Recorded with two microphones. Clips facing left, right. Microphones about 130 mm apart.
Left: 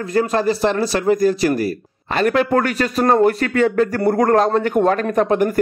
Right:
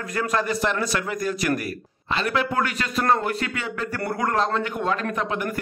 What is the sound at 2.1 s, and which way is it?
A man's voice, 45° left (ahead or behind).